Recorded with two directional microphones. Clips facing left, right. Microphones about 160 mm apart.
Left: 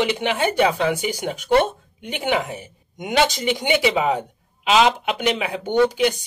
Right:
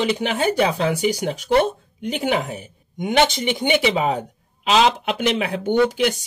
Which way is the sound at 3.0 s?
25° right (ahead or behind).